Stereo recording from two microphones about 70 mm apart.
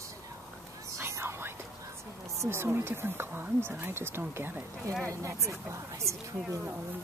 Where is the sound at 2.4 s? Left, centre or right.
Right.